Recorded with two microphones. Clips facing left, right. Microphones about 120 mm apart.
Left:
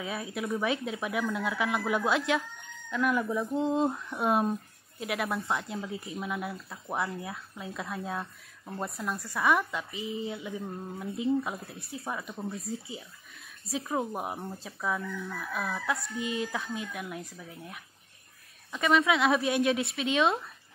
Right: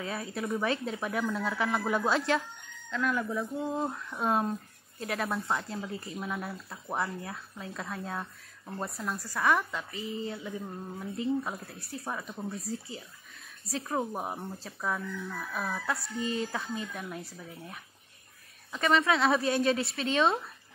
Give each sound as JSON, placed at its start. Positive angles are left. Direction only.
{"t": 0.0, "sound": "speech", "side_deg": 5}
{"t": 9.3, "sound": "speech", "side_deg": 10}
{"t": 12.6, "sound": "speech", "side_deg": 20}
{"t": 13.7, "sound": "speech", "side_deg": 5}
{"t": 16.2, "sound": "speech", "side_deg": 10}
{"t": 18.7, "sound": "speech", "side_deg": 5}